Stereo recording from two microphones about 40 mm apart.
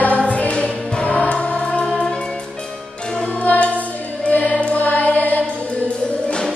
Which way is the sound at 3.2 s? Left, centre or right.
Left.